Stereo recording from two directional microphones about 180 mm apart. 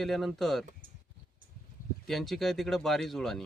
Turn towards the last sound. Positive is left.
turn(degrees=0)  # may be behind; listen again after turning